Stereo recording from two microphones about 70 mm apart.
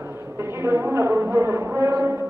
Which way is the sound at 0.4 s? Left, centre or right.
Right.